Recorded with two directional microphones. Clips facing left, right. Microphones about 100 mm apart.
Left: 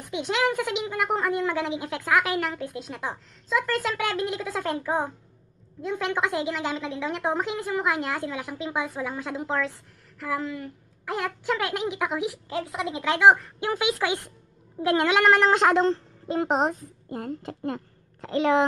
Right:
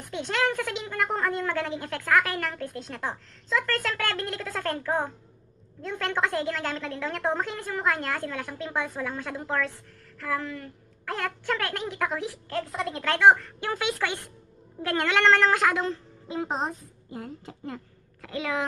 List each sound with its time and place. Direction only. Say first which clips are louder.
0.1 s a woman's voice: left 2 dB; 15° left (ahead or behind); by 16.0 s 30° left (ahead or behind)
16.3 s a woman's voice: left 6 dB; 70° left (ahead or behind)
18.2 s a woman's voice: left 8 dB; 30° left (ahead or behind)